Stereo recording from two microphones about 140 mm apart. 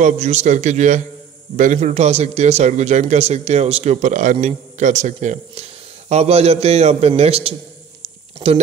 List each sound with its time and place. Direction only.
0.0 s a man's voice: 50° right (ahead or behind); by 8.6 s 30° right (ahead or behind)